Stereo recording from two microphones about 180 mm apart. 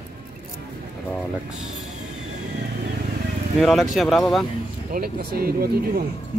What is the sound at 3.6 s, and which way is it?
Speech, centre (ahead or behind).